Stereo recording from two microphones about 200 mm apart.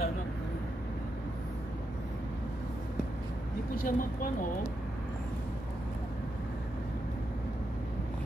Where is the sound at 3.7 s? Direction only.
45° left (ahead or behind).